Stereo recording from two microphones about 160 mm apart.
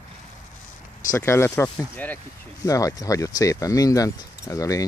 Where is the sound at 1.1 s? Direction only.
15° left (ahead or behind).